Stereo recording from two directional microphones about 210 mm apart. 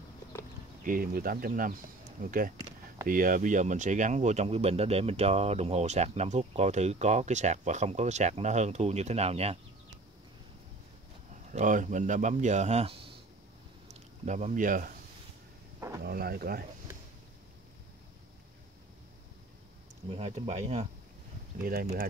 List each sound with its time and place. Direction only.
0.8 s speech: 45° right (ahead or behind)
11.5 s speech: 35° right (ahead or behind)
16.0 s speech: 45° right (ahead or behind)
20.1 s speech: 30° right (ahead or behind)
21.5 s speech: 45° right (ahead or behind)